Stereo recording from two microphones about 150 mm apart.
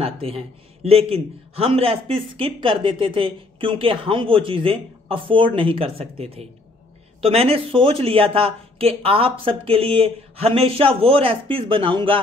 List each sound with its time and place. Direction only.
0.0 s a man's voice: 40° right (ahead or behind)